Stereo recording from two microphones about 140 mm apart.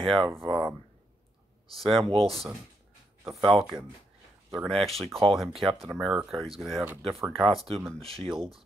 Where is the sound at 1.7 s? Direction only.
Centre (ahead or behind).